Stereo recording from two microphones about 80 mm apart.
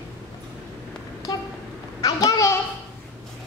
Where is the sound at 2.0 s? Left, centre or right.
Left.